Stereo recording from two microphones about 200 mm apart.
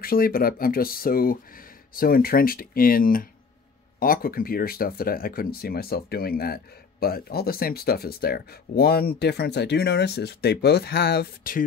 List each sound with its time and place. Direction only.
0.0 s speech: 45° left (ahead or behind)